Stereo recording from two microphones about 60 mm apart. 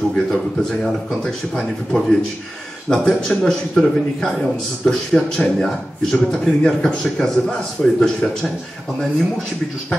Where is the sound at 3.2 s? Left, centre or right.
Centre.